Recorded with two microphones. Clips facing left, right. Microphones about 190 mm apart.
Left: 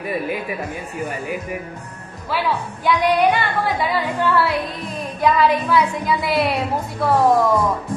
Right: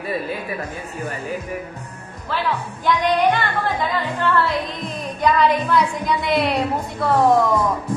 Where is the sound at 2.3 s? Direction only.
10° left (ahead or behind).